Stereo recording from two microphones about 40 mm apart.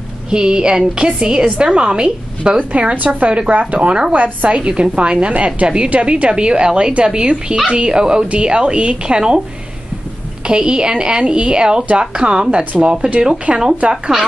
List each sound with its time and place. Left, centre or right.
0.3 s a woman's voice: right
4.6 s a woman's voice: right
10.4 s a woman's voice: right